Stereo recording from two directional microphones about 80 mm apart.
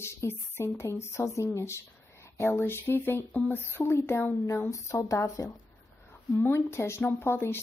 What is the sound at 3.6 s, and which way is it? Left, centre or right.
Speech, left.